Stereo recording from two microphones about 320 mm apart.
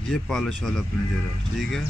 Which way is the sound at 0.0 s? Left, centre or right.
Centre.